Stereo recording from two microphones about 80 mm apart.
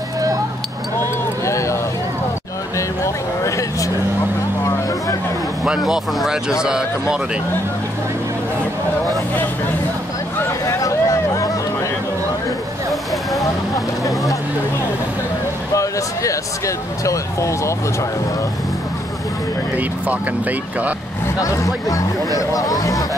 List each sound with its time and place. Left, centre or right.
1.4 s a sound: left
3.0 s a sound: left
4.6 s vehicle: left
5.9 s speech: centre
10.6 s a sound: left
13.4 s vehicle: left
15.7 s speech: left
19.8 s speech: centre
21.4 s speech: left